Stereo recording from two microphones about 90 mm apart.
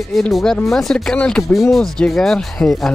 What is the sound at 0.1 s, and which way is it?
Speech, 5° left (ahead or behind).